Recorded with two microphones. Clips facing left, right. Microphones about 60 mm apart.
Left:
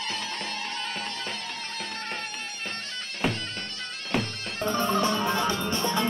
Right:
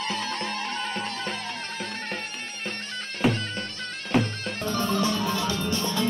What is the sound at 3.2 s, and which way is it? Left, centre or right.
Bagpipes, centre.